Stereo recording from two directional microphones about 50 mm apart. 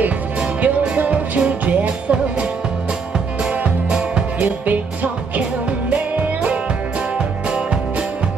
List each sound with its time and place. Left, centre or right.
0.6 s music: right
3.9 s music: right